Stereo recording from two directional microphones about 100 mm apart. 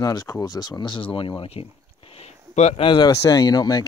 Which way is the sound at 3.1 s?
35° left (ahead or behind).